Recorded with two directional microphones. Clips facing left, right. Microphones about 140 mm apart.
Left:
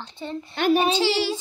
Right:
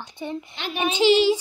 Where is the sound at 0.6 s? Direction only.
45° left (ahead or behind).